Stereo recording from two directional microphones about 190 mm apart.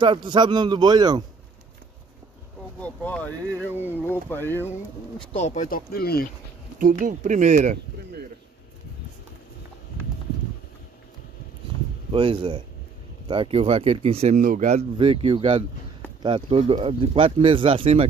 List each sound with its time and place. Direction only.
0.0 s speech: 25° right (ahead or behind)
2.8 s speech: 5° left (ahead or behind)
5.2 s speech: 35° left (ahead or behind); by 6.2 s 55° left (ahead or behind)
6.8 s speech: 50° right (ahead or behind)
12.1 s speech: 30° right (ahead or behind)
14.4 s speech: 45° right (ahead or behind)